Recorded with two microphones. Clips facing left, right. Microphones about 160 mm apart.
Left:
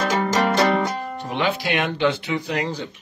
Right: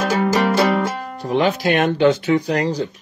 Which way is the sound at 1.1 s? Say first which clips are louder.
Right 9 dB; 40° right (ahead or behind).